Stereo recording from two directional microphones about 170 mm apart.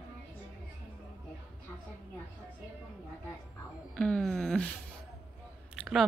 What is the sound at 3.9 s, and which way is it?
Music, 5° left (ahead or behind).